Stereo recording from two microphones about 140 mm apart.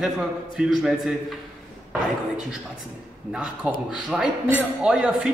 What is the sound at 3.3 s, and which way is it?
A man's voice, 5° right (ahead or behind).